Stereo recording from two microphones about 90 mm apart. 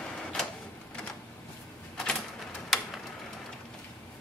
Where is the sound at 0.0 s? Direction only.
10° left (ahead or behind).